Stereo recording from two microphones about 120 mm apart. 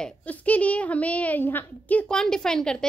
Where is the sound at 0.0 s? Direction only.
10° left (ahead or behind).